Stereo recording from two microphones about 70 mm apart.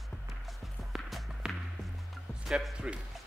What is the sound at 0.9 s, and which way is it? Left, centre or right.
Music, centre.